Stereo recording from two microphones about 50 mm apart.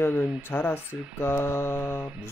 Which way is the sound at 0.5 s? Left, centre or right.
Left.